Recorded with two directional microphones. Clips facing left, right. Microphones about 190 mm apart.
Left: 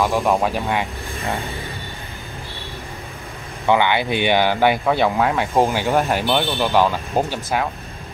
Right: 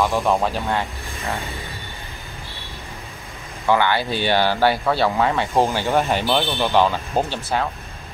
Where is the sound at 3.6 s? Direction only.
20° left (ahead or behind).